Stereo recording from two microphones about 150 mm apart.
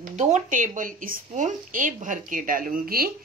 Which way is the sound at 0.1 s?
50° right (ahead or behind).